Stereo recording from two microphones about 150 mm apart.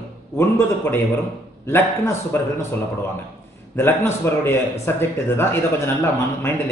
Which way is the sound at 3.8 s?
15° left (ahead or behind).